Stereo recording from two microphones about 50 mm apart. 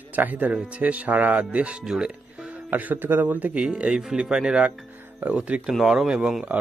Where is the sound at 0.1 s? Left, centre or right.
Right.